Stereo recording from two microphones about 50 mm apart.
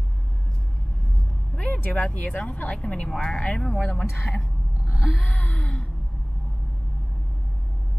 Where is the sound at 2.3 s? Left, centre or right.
Centre.